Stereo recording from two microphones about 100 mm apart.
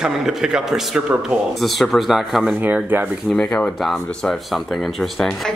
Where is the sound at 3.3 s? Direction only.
10° left (ahead or behind).